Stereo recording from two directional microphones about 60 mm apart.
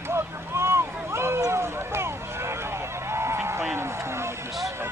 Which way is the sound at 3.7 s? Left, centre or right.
Right.